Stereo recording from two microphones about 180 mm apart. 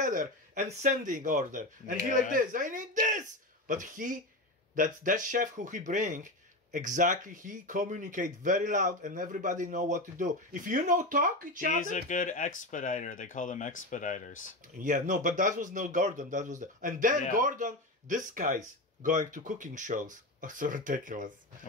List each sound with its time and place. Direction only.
0.0 s speech: 45° right (ahead or behind)
11.8 s speech: 45° left (ahead or behind)
14.8 s speech: 45° right (ahead or behind)